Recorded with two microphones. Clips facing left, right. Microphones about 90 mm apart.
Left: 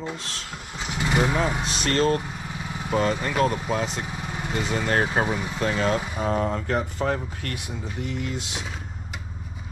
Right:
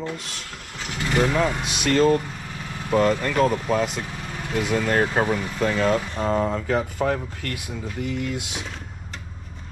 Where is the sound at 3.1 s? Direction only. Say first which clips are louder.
Right 2 dB; 5° left (ahead or behind).